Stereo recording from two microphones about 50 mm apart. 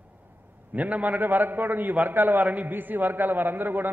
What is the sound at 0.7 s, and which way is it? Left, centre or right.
A man's voice, right.